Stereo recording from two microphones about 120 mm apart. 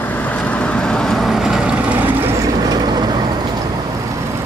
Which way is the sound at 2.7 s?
35° right (ahead or behind).